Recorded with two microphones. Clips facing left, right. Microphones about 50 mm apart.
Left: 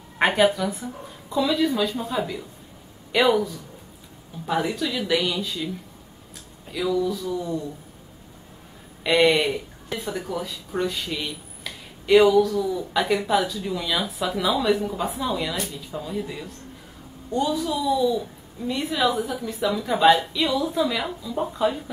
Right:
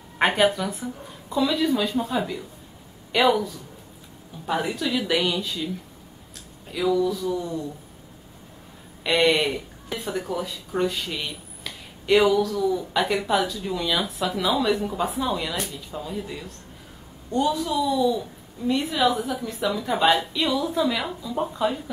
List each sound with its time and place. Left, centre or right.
0.2 s speech: centre
6.7 s speech: centre
9.0 s speech: centre